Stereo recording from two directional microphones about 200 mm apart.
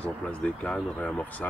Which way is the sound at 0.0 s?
5° left (ahead or behind).